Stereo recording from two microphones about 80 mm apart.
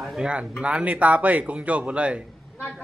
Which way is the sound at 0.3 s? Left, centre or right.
Centre.